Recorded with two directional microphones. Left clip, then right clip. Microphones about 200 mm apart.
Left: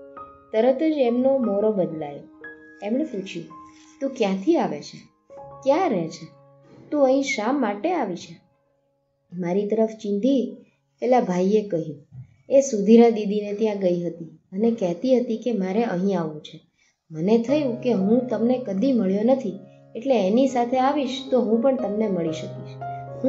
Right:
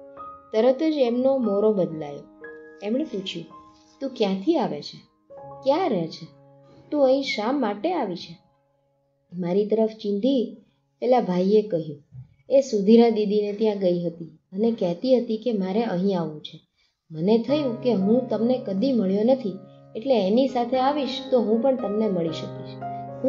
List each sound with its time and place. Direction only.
0.5 s a woman's voice: 25° right (ahead or behind)
4.0 s a woman's voice: 15° right (ahead or behind)
9.4 s a woman's voice: 15° right (ahead or behind)